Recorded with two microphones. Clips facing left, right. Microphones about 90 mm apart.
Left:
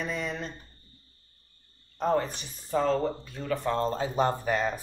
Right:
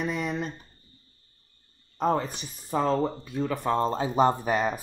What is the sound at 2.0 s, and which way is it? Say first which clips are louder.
Speech: right 1 dB; 10° right (ahead or behind).